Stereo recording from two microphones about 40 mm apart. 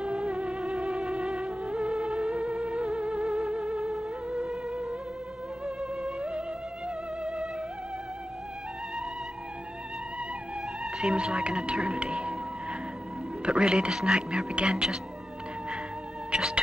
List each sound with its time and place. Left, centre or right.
0.0 s music: right
10.8 s speech: centre
13.5 s speech: right
16.3 s speech: right